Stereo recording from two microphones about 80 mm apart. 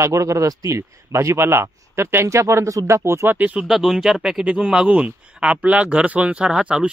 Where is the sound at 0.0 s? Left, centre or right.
Right.